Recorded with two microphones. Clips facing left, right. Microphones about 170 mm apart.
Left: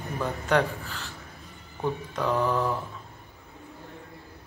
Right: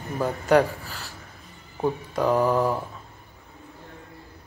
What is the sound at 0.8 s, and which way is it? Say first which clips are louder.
A man's voice: even; 40° right (ahead or behind).